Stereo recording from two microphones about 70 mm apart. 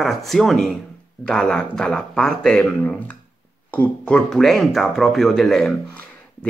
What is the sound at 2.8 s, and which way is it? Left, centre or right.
Speech, left.